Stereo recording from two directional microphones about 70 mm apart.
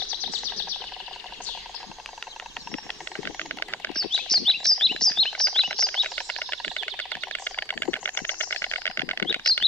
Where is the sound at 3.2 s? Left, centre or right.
Left.